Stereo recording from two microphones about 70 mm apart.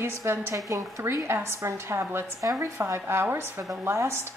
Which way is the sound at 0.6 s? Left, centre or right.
Right.